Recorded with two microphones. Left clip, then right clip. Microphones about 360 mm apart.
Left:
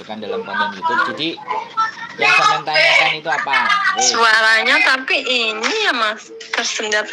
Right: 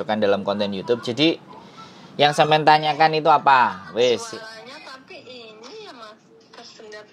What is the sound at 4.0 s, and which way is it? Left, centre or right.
Music, left.